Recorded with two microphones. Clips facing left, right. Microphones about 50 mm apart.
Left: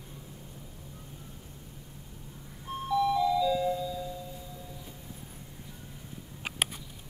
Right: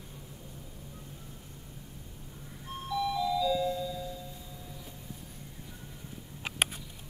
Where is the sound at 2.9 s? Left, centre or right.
Centre.